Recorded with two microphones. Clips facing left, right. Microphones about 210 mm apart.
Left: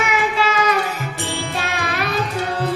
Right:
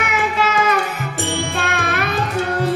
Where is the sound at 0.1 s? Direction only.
50° right (ahead or behind).